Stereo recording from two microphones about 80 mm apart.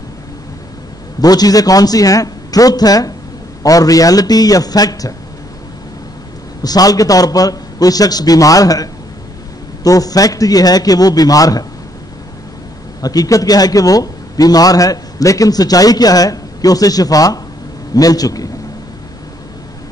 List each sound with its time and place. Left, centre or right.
1.2 s a man's voice: left
6.6 s a man's voice: left
9.8 s a man's voice: left
13.0 s a man's voice: left